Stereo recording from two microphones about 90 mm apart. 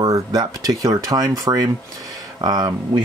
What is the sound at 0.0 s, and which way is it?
Speech, 45° right (ahead or behind).